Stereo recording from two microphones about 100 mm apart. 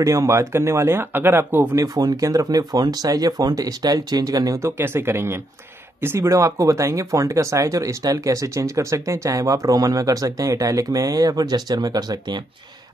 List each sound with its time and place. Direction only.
0.0 s speech: 35° right (ahead or behind)
1.8 s speech: 40° right (ahead or behind)